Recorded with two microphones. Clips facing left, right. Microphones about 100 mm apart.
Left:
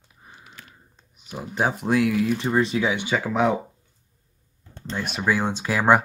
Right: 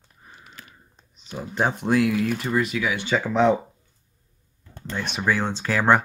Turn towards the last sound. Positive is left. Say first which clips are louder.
# left 1 dB
turn(degrees=10)  # may be behind; listen again after turning